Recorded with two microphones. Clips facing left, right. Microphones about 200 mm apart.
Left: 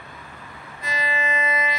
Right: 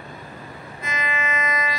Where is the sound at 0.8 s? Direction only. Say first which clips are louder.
Left 1 dB; 35° left (ahead or behind).